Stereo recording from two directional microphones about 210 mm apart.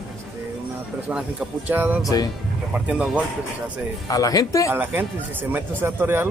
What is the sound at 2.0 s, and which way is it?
Speech, 20° left (ahead or behind).